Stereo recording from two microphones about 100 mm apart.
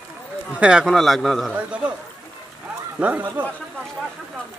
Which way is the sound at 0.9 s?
Centre (ahead or behind).